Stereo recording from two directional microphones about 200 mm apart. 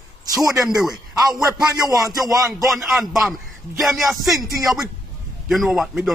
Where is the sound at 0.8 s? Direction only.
Centre (ahead or behind).